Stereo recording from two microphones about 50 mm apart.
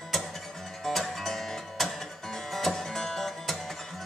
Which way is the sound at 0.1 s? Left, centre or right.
Centre.